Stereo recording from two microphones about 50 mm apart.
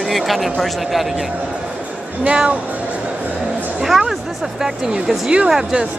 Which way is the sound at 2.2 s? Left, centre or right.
Right.